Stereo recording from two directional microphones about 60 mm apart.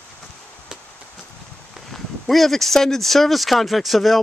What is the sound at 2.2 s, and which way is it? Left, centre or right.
Speech, centre.